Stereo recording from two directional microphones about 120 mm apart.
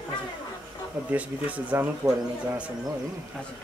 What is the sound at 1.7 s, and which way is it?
Speech, 20° right (ahead or behind).